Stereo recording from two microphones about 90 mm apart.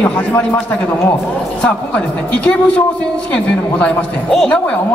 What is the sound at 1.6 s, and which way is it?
A woman's voice, 15° left (ahead or behind).